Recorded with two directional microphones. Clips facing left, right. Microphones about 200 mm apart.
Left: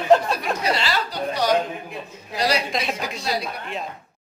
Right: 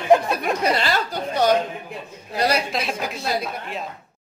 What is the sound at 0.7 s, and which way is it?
Speech, 50° right (ahead or behind).